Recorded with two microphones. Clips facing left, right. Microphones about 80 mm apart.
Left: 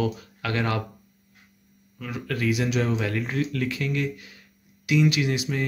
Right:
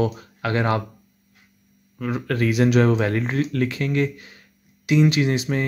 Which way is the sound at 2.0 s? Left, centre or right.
Right.